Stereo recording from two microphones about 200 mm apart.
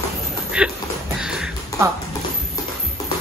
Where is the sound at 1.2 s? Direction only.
5° right (ahead or behind).